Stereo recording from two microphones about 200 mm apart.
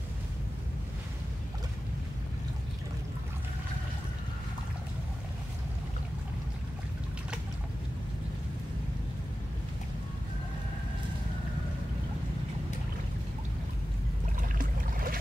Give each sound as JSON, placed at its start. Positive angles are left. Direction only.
{"t": 14.6, "sound": "boat", "side_deg": -45}